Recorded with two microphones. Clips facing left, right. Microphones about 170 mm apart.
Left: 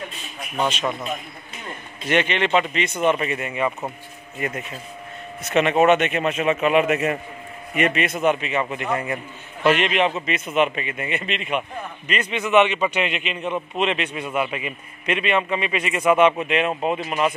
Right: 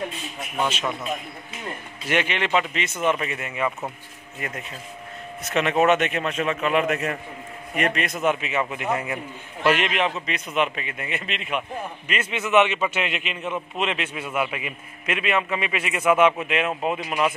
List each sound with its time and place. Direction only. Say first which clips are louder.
2.0 s a man's voice: left 3 dB; 5° right (ahead or behind)